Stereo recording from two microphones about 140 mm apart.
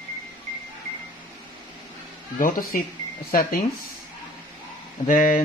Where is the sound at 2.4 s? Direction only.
75° left (ahead or behind).